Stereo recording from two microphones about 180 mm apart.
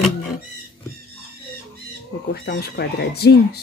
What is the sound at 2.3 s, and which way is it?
Speech, 60° left (ahead or behind).